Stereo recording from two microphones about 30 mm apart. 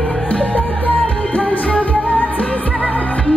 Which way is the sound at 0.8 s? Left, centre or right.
Left.